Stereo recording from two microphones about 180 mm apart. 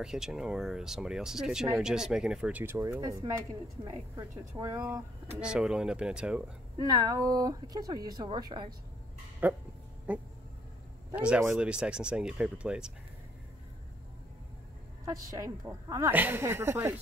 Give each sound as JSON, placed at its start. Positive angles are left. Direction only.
{"t": 0.0, "sound": "a woman's voice", "side_deg": -5}
{"t": 5.4, "sound": "speech", "side_deg": -5}
{"t": 7.0, "sound": "speech", "side_deg": -20}
{"t": 9.4, "sound": "a woman's voice", "side_deg": -10}
{"t": 15.0, "sound": "a woman's voice", "side_deg": -20}